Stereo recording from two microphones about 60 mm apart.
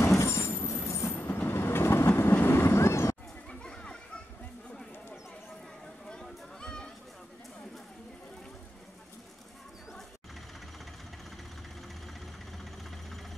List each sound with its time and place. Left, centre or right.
0.0 s train: left
2.3 s vehicle: left
3.6 s children playing: centre
6.6 s a sound: centre